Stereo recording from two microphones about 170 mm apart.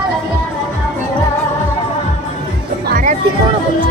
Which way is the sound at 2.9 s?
55° right (ahead or behind).